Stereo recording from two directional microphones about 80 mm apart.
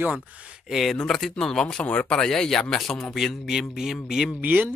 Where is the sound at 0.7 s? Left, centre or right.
Centre.